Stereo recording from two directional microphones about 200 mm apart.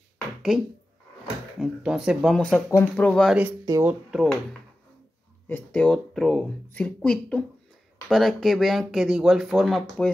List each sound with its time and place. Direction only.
1.6 s speech: 5° right (ahead or behind)
3.6 s speech: 15° right (ahead or behind)
4.1 s speech: centre (ahead or behind)
5.5 s speech: 5° left (ahead or behind)